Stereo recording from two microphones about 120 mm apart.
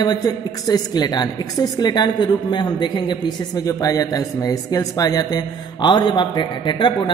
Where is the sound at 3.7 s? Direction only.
30° left (ahead or behind).